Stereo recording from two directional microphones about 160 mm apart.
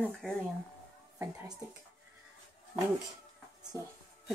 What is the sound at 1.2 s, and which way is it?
Speech, 15° right (ahead or behind).